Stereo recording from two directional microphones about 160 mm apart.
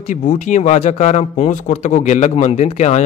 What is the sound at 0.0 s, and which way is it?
Speech, 50° left (ahead or behind).